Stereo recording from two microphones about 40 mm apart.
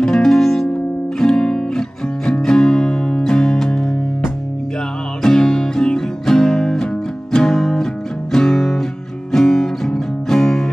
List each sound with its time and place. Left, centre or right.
0.0 s music: centre
5.2 s music: centre